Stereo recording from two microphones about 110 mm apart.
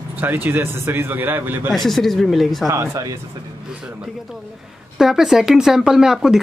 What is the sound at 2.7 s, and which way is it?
Speech, 30° right (ahead or behind).